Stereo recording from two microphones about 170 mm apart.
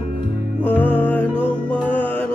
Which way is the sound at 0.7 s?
10° left (ahead or behind).